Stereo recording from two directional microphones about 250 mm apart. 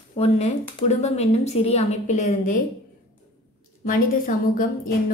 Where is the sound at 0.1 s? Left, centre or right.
Left.